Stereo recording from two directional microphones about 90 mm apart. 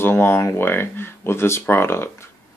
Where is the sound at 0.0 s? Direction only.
25° left (ahead or behind).